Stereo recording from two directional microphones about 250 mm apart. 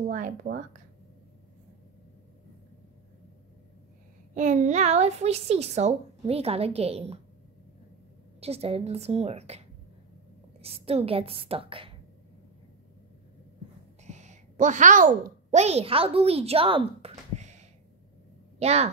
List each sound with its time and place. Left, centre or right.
0.1 s speech: right
4.4 s a woman's voice: right
8.4 s a woman's voice: right
10.6 s a woman's voice: right
14.0 s a woman's voice: right